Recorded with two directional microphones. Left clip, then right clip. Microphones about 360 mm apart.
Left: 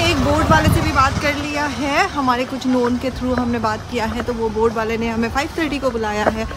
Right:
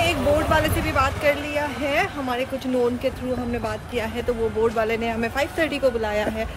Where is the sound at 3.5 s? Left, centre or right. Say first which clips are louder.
Left 6 dB; centre.